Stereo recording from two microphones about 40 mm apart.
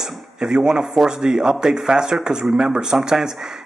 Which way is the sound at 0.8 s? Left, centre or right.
Centre.